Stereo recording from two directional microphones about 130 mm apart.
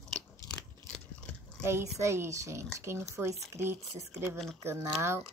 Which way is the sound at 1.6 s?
20° right (ahead or behind).